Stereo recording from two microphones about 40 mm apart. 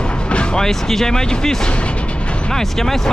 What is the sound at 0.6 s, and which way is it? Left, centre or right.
Speech, centre.